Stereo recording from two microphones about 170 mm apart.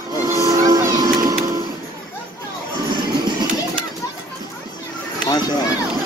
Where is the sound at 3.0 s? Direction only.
25° right (ahead or behind).